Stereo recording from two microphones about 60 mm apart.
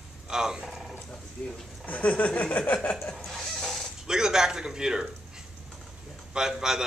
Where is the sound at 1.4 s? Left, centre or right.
Centre.